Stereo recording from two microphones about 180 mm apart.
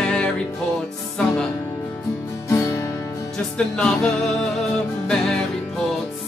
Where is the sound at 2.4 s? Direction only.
15° left (ahead or behind).